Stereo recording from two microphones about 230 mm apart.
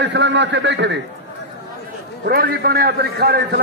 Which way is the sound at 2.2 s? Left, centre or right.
Right.